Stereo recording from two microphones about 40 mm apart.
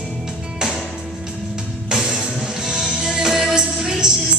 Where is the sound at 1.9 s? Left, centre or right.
Centre.